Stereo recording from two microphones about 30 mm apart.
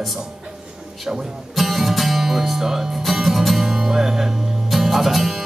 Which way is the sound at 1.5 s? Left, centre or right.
Centre.